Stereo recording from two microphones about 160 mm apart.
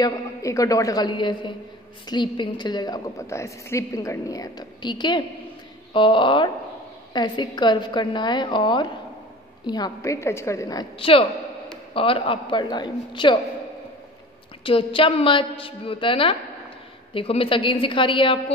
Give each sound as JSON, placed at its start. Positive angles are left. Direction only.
{"t": 0.0, "sound": "a woman's voice", "side_deg": 20}
{"t": 11.0, "sound": "a woman's voice", "side_deg": 35}
{"t": 14.6, "sound": "a woman's voice", "side_deg": 35}